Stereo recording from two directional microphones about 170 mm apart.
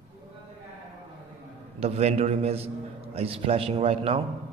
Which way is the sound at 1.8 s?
40° right (ahead or behind).